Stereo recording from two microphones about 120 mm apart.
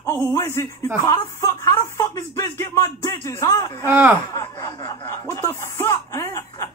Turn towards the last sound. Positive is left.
turn(degrees=25)  # may be behind; listen again after turning